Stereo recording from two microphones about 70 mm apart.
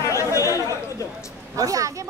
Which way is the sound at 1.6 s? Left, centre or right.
Right.